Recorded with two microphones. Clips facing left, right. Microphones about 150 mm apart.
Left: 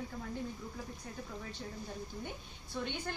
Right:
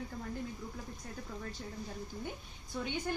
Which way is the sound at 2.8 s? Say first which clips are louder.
Right 3 dB; 10° right (ahead or behind).